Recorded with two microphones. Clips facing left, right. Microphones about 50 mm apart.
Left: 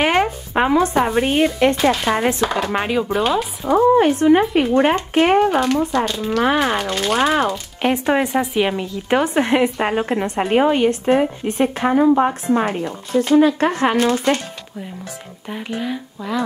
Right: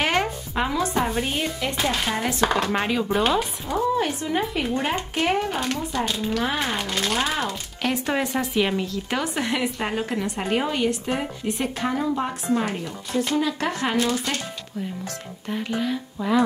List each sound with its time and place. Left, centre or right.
0.0 s speech: left
2.0 s a woman's voice: left
2.5 s speech: centre
3.7 s a woman's voice: left
5.5 s speech: left
6.3 s a woman's voice: left
6.8 s speech: centre
7.2 s speech: left
9.1 s a woman's voice: left
15.4 s speech: centre
16.2 s speech: centre